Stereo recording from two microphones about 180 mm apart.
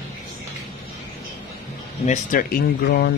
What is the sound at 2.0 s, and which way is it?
Speech, 45° left (ahead or behind).